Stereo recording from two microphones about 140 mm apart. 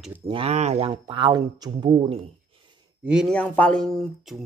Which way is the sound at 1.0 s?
35° right (ahead or behind).